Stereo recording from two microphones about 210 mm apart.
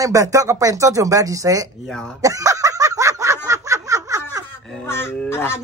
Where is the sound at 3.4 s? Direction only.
15° right (ahead or behind).